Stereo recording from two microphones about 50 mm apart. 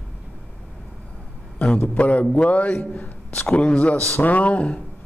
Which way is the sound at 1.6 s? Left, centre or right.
Left.